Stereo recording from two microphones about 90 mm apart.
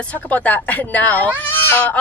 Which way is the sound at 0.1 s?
15° left (ahead or behind).